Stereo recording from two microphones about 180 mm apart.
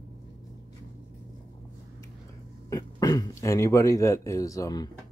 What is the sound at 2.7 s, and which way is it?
Speech, 20° left (ahead or behind).